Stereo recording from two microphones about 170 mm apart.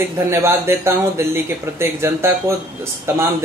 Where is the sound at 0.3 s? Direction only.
15° right (ahead or behind).